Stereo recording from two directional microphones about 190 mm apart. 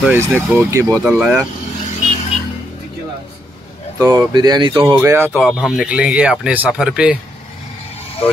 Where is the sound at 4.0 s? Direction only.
20° right (ahead or behind).